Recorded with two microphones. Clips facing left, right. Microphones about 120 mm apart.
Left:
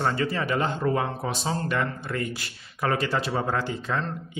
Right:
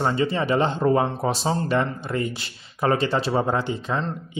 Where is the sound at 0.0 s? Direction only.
20° right (ahead or behind).